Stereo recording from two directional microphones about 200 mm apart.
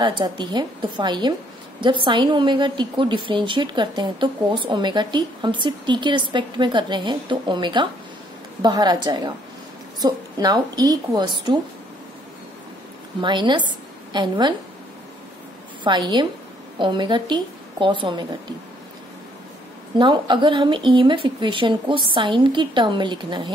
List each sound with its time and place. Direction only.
0.0 s a woman's voice: 20° right (ahead or behind)
13.2 s a woman's voice: 25° right (ahead or behind)
15.8 s a woman's voice: 20° right (ahead or behind)
20.0 s a woman's voice: 25° right (ahead or behind)